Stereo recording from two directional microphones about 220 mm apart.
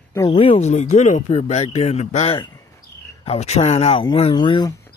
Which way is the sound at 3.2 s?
30° left (ahead or behind).